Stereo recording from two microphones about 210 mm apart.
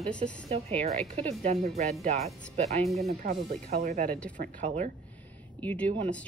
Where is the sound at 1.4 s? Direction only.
30° right (ahead or behind).